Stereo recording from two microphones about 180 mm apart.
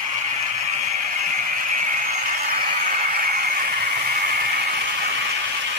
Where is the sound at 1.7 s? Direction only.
45° right (ahead or behind).